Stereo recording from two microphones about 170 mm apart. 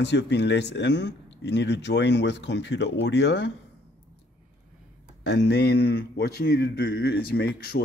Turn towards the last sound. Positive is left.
turn(degrees=70)  # may be behind; listen again after turning